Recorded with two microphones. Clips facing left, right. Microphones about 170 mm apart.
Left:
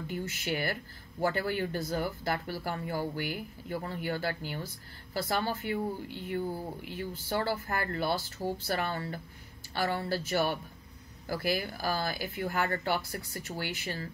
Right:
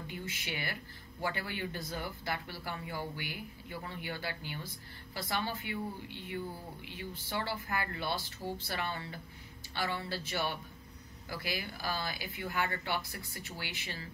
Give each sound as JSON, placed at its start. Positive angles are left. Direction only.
{"t": 0.1, "sound": "speech", "side_deg": 45}